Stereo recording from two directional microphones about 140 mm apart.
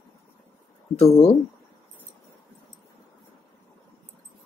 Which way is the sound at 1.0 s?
45° left (ahead or behind).